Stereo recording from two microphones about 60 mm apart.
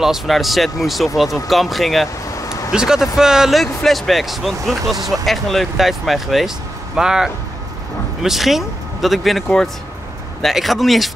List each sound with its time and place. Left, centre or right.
0.0 s speech: centre
2.4 s a sound: left
2.7 s speech: centre
3.6 s speech: centre
10.4 s speech: centre